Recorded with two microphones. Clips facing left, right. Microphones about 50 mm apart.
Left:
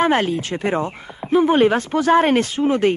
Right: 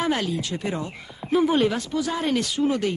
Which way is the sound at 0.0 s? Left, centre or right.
Left.